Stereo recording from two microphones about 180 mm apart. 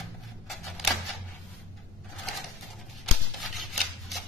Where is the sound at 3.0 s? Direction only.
Centre (ahead or behind).